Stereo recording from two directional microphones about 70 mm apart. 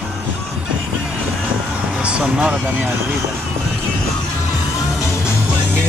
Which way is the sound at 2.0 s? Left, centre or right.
Centre.